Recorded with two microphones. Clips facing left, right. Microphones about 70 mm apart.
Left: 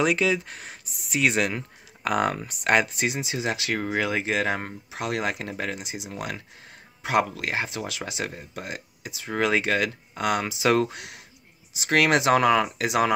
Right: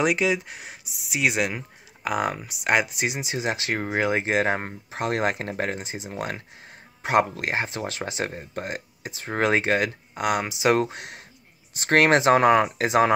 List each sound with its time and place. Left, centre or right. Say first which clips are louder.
0.0 s speech: even; right
11.7 s speech: right 3 dB; right
12.0 s speech: right 2 dB; right